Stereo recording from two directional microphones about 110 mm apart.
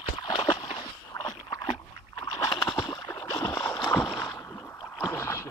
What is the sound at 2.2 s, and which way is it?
Rowboat, 40° left (ahead or behind).